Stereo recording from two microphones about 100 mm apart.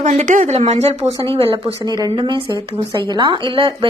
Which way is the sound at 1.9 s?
40° right (ahead or behind).